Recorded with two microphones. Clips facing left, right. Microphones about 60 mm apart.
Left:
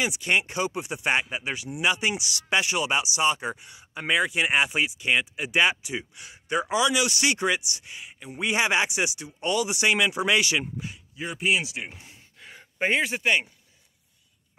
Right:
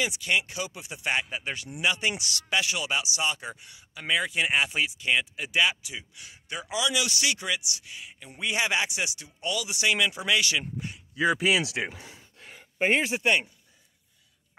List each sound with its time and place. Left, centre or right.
0.2 s speech: left
1.3 s speech: centre
2.5 s speech: left
5.6 s speech: left
8.1 s speech: centre
9.4 s speech: left
10.6 s speech: centre
11.1 s speech: right